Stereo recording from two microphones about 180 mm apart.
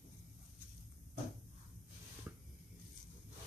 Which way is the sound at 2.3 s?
10° right (ahead or behind).